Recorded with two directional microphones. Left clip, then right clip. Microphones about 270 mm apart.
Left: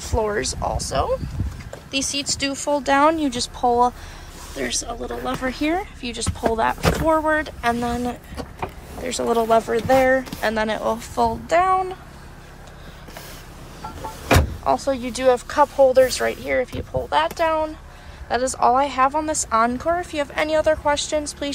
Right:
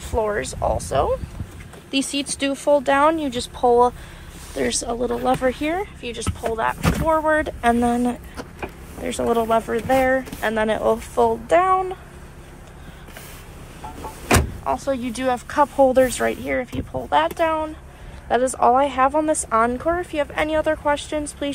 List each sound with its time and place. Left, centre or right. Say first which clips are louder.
0.0 s speech: even; centre
4.6 s speech: right 4 dB; centre
14.6 s speech: left 2 dB; centre